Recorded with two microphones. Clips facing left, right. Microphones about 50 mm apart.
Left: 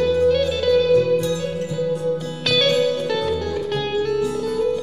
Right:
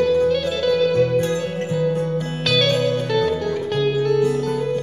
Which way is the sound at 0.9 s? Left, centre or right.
Right.